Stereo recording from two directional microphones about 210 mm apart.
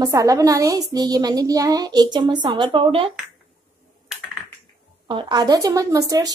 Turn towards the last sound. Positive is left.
turn(degrees=-15)  # may be behind; listen again after turning